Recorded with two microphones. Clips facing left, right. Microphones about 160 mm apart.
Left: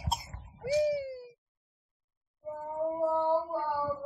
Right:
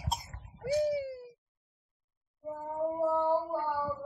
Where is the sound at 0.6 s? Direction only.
55° right (ahead or behind).